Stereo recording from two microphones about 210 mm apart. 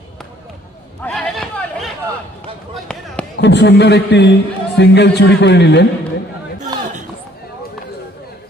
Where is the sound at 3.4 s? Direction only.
55° left (ahead or behind).